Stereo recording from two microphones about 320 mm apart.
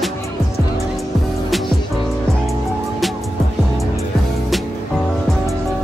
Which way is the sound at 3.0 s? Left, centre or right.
Centre.